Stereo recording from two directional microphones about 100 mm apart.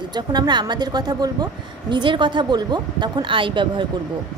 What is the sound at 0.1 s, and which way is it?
Speech, 45° right (ahead or behind).